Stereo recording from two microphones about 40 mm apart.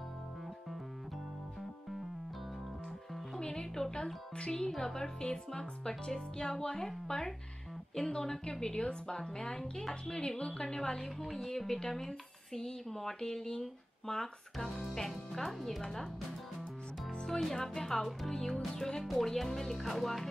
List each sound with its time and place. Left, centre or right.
3.3 s music: centre
3.9 s a woman's voice: centre
17.1 s speech: centre